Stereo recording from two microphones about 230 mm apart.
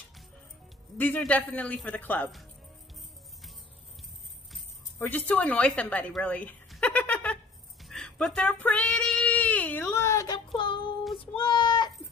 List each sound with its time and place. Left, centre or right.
0.9 s a man's voice: centre
4.5 s jingle bell: centre
5.0 s a woman's voice: centre
7.8 s female singing: centre; by 11.0 s left
11.1 s child singing: left